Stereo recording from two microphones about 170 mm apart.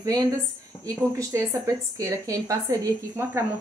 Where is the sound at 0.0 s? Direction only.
20° right (ahead or behind).